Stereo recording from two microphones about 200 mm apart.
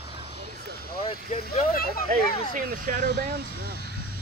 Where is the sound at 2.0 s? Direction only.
45° right (ahead or behind).